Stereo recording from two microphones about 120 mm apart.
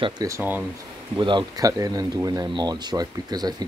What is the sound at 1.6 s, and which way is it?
Speech, 30° right (ahead or behind).